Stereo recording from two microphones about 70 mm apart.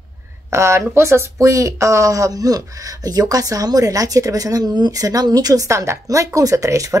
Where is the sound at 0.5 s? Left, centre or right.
Right.